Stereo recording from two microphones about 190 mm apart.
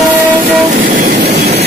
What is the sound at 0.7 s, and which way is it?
Train, 50° right (ahead or behind).